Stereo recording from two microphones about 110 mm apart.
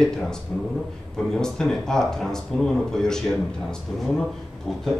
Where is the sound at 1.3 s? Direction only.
5° left (ahead or behind).